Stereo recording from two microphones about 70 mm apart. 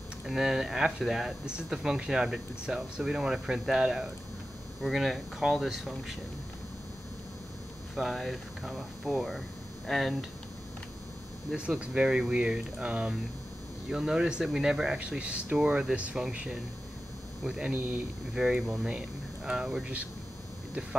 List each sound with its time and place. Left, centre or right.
0.3 s speech: centre
7.9 s speech: centre
11.5 s speech: centre
18.3 s speech: centre